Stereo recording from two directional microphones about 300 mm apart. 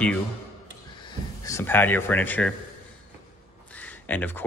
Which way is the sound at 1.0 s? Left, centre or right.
Centre.